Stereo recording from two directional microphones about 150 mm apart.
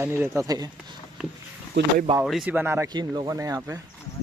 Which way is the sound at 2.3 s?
5° right (ahead or behind).